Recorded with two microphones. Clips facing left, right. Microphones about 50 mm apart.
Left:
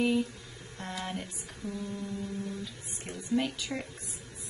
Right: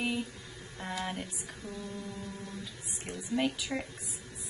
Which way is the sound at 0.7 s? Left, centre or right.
Centre.